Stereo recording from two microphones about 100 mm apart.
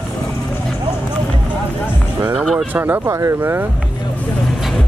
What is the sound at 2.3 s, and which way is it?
Speech, 5° right (ahead or behind).